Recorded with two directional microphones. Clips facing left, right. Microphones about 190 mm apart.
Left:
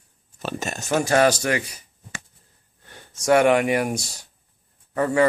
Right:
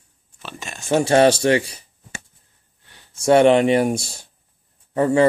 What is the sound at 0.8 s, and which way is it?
Speech, 30° right (ahead or behind).